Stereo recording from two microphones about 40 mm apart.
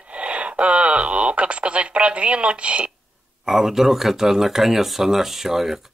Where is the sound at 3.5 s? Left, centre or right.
Centre.